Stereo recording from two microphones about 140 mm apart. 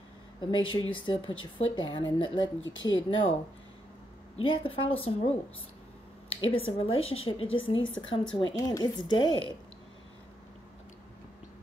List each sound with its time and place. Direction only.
0.4 s a woman's voice: 35° left (ahead or behind)
4.4 s a woman's voice: 40° left (ahead or behind)
6.4 s a woman's voice: 40° left (ahead or behind)
8.4 s a woman's voice: 25° left (ahead or behind)